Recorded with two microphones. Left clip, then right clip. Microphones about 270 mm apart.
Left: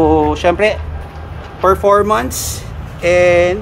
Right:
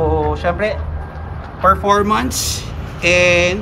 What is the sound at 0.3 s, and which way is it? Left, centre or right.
Speech, left.